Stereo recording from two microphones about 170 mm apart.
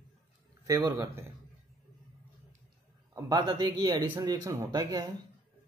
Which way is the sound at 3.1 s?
20° right (ahead or behind).